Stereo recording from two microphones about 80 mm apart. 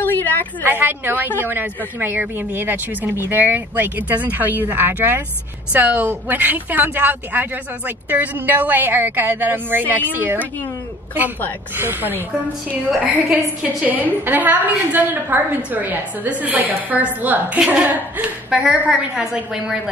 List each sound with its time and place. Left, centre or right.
0.0 s a sound: left
0.7 s a woman's voice: right
11.7 s a woman's voice: right
18.5 s a woman's voice: centre